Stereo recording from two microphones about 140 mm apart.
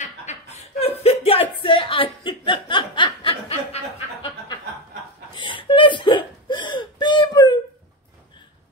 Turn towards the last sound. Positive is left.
turn(degrees=30)  # may be behind; listen again after turning